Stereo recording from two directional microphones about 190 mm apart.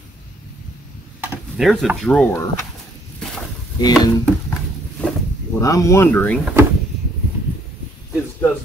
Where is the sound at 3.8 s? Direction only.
20° left (ahead or behind).